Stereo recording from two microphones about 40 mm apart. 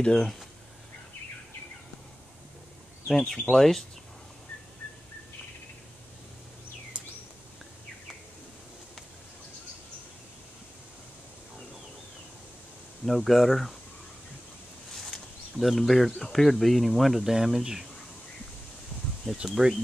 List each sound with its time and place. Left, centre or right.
0.0 s speech: centre
3.1 s speech: centre
13.0 s speech: centre
15.0 s a sound: centre
16.2 s speech: centre
17.3 s speech: centre
19.4 s speech: centre